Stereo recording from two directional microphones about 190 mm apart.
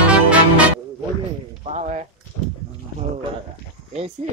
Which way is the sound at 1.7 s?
35° right (ahead or behind).